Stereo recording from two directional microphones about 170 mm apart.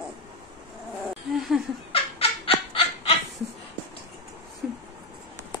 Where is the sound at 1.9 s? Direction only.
35° left (ahead or behind).